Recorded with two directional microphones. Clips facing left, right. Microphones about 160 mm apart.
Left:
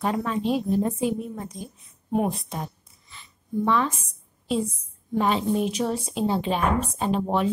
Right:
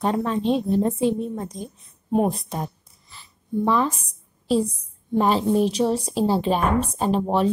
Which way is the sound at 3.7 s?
35° right (ahead or behind).